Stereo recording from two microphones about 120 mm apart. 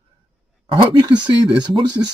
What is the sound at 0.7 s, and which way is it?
Speech, 45° right (ahead or behind).